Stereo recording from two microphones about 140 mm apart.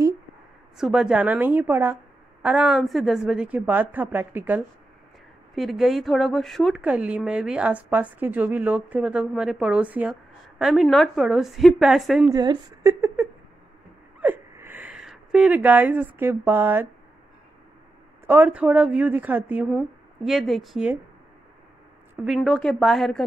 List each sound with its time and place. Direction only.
0.7 s speech: 5° right (ahead or behind)
2.4 s speech: 5° right (ahead or behind)
5.5 s a woman's voice: centre (ahead or behind)
12.3 s speech: 25° right (ahead or behind)
14.2 s a sound: 15° right (ahead or behind)
18.2 s a woman's voice: 15° right (ahead or behind)
22.1 s a woman's voice: centre (ahead or behind)